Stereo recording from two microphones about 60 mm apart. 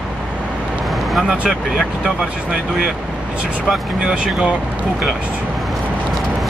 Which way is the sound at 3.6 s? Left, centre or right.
Centre.